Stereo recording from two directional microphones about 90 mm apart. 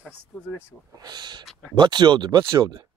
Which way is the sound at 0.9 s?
50° right (ahead or behind).